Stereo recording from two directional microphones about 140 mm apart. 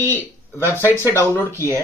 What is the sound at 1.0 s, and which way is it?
Speech, 20° left (ahead or behind).